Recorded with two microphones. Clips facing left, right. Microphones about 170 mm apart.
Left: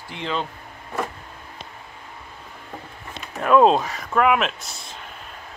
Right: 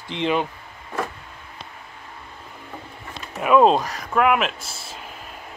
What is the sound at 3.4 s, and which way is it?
Speech, 5° right (ahead or behind).